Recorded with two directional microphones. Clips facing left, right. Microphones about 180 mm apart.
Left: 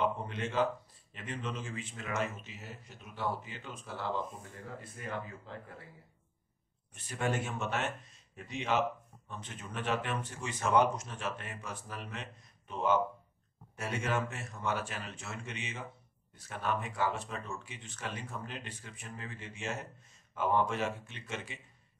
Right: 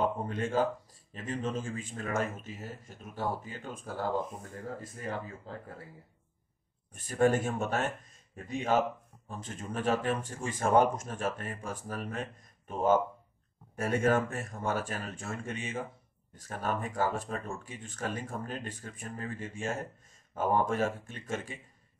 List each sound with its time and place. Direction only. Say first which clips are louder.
0.0 s a sound: right 3 dB; 45° right (ahead or behind)
1.1 s speech: right 6 dB; 40° right (ahead or behind)
6.9 s speech: right 8 dB; 45° right (ahead or behind)